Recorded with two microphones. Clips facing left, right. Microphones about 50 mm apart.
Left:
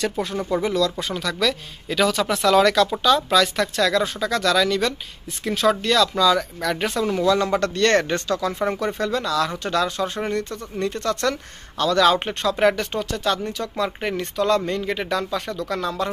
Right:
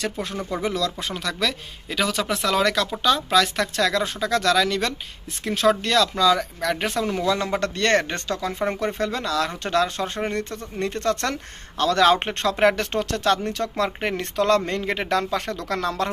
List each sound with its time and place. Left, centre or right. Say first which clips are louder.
0.5 s speech: left 3 dB; centre
0.7 s speech: left 4 dB; right
1.9 s speech: left 3 dB; centre; by 16.1 s right